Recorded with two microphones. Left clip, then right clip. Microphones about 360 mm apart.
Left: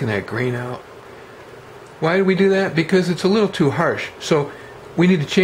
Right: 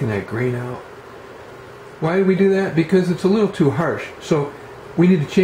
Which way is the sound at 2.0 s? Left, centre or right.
Centre.